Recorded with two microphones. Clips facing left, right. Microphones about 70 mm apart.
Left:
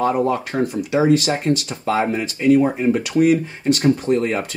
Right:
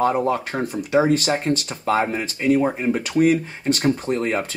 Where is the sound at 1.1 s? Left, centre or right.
Right.